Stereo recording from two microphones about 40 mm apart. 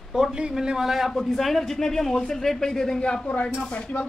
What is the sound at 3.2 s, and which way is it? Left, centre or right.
Speech, left.